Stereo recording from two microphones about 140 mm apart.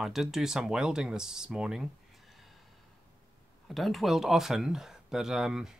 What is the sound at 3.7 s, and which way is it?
Speech, centre (ahead or behind).